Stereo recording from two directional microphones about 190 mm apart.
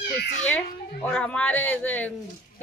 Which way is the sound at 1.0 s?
5° left (ahead or behind).